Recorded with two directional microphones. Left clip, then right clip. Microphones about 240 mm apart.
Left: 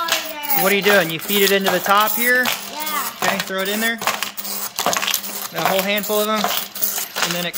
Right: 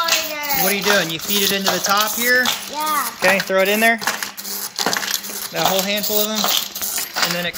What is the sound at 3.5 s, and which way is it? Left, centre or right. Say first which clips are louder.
Speech: right 6 dB; centre.